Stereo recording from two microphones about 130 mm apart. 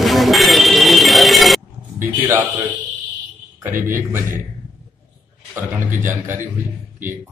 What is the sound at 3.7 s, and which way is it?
Speech, 90° right.